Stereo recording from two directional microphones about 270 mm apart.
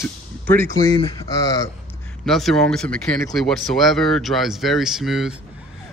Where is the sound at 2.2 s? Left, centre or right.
Centre.